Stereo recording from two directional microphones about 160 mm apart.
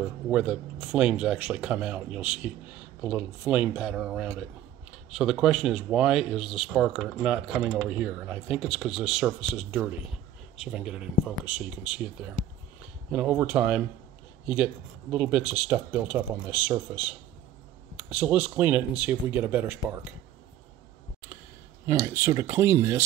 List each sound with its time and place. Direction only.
0.0 s speech: 5° right (ahead or behind)
17.9 s speech: 10° right (ahead or behind)
21.8 s speech: 20° right (ahead or behind)